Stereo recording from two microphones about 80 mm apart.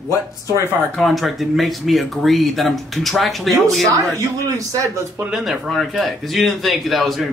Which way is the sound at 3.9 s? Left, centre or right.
Right.